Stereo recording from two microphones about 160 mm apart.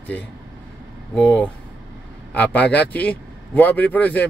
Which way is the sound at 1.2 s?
5° left (ahead or behind).